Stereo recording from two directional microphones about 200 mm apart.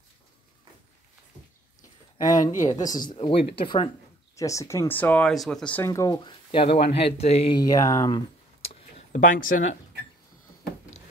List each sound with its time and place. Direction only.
2.3 s speech: 40° left (ahead or behind)
2.7 s speech: 20° left (ahead or behind)
8.9 s speech: 40° left (ahead or behind)